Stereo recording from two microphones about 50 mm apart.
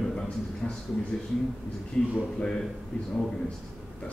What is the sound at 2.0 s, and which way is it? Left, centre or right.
Speech, centre.